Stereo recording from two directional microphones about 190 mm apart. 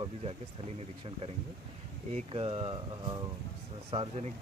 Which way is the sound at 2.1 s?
30° right (ahead or behind).